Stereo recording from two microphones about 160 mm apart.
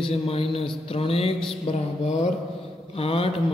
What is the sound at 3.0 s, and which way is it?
Speech, 35° left (ahead or behind).